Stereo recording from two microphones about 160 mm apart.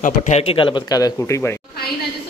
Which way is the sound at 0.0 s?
45° left (ahead or behind).